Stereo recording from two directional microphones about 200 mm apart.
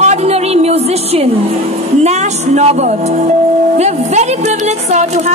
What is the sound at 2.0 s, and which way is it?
Speech, 35° right (ahead or behind).